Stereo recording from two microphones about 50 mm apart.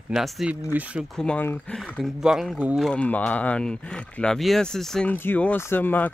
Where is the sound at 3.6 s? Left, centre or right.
Centre.